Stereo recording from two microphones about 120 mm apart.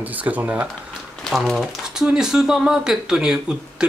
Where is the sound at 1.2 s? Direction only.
Centre (ahead or behind).